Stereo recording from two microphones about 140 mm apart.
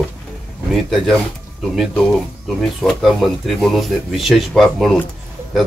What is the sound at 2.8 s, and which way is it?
A man's voice, 5° left (ahead or behind).